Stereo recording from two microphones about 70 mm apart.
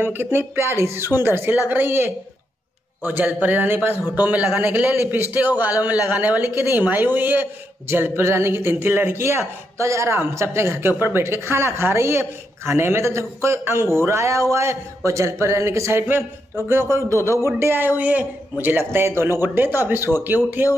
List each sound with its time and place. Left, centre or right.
0.0 s a man's voice: right
6.5 s a man's voice: right
16.9 s a man's voice: right